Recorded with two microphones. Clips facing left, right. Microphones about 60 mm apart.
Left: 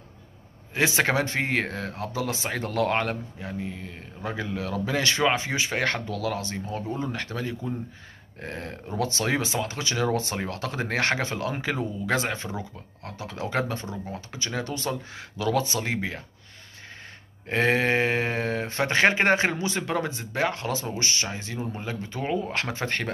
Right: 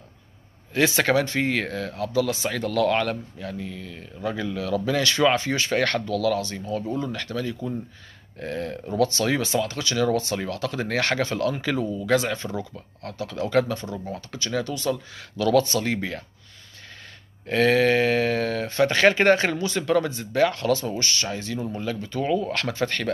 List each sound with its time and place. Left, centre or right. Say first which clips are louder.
0.7 s speech: right 3 dB; left
15.3 s speech: right 5 dB; centre
17.5 s speech: right 4 dB; left